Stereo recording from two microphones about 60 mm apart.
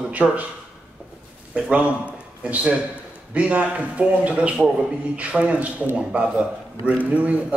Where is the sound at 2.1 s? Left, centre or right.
Right.